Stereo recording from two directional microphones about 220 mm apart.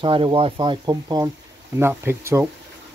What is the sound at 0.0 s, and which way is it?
Speech, 20° right (ahead or behind).